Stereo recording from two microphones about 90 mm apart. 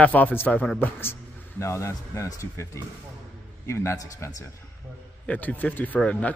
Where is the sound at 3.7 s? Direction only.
30° left (ahead or behind).